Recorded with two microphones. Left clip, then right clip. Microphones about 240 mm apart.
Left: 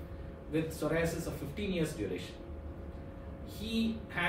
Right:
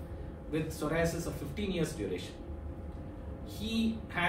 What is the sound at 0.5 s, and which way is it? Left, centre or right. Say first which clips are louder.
Speech: even; centre.